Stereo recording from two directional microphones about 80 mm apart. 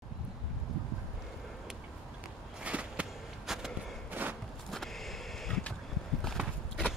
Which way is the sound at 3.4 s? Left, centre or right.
Centre.